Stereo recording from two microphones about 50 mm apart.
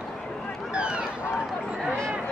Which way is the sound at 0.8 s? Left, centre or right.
Right.